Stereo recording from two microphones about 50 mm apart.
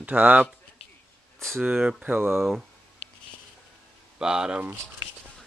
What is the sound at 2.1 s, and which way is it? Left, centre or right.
Speech, right.